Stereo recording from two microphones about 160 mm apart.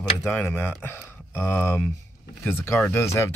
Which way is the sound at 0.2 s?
5° left (ahead or behind).